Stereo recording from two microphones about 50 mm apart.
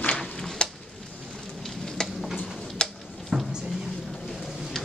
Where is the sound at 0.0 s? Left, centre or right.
Centre.